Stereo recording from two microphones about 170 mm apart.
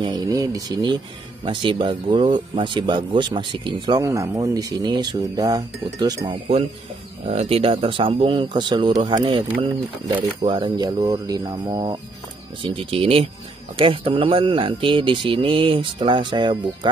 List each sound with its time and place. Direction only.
0.0 s speech: 25° right (ahead or behind)
7.2 s speech: 35° right (ahead or behind)